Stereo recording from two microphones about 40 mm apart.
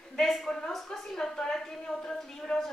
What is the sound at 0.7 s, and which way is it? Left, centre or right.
A woman's voice, centre.